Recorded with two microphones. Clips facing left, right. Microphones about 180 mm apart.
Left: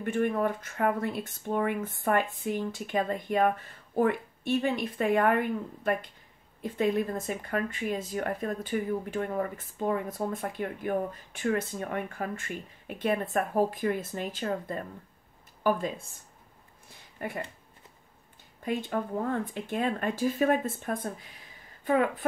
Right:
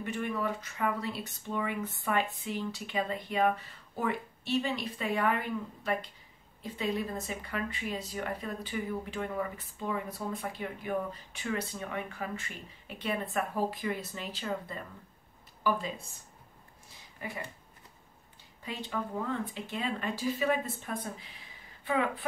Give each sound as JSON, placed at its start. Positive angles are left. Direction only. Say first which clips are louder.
{"t": 0.0, "sound": "speech", "louder": "left 6 dB", "side_deg": 50}
{"t": 18.6, "sound": "speech", "louder": "left 6 dB", "side_deg": 50}